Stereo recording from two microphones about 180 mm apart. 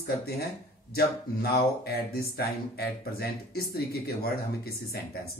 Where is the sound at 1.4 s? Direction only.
60° left (ahead or behind).